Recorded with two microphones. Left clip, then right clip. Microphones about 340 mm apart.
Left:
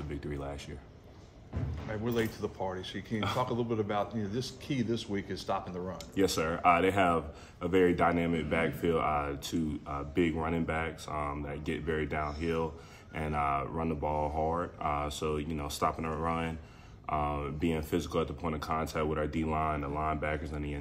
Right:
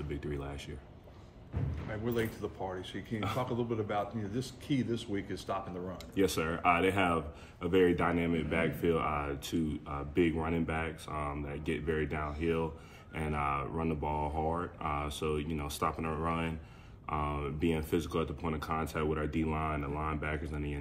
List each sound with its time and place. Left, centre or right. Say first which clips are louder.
0.1 s a man's voice: left 2 dB; centre
2.0 s speech: left 2 dB; left
6.1 s a man's voice: left 2 dB; centre